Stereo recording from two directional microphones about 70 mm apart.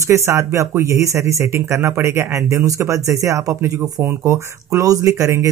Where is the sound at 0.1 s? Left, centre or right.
Right.